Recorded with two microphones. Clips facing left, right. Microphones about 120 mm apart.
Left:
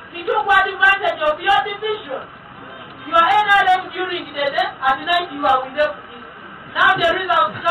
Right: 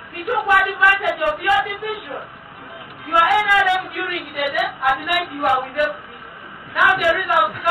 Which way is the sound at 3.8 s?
Centre (ahead or behind).